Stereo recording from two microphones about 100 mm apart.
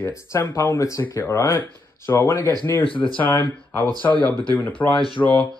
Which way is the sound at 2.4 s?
40° right (ahead or behind).